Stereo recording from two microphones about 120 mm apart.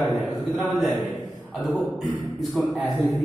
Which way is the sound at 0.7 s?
Centre (ahead or behind).